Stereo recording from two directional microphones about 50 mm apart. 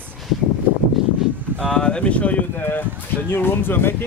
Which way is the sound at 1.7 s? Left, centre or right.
Centre.